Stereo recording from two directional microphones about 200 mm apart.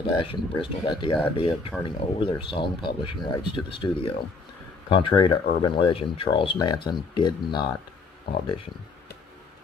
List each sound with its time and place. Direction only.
0.0 s speech: 25° left (ahead or behind)